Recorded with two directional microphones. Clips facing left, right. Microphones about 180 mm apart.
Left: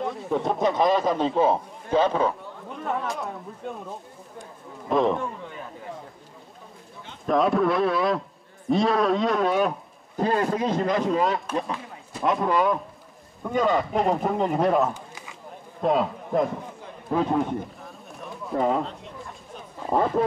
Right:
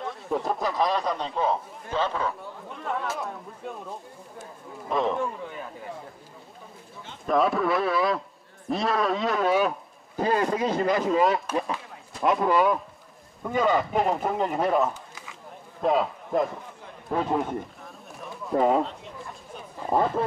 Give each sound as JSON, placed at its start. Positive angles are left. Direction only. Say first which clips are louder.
{"t": 0.0, "sound": "speech", "louder": "left 3 dB", "side_deg": 0}
{"t": 1.3, "sound": "a man's voice", "louder": "left 5 dB", "side_deg": 25}
{"t": 2.7, "sound": "speech", "louder": "left 2 dB", "side_deg": 0}
{"t": 7.2, "sound": "a man's voice", "louder": "left 2 dB", "side_deg": 0}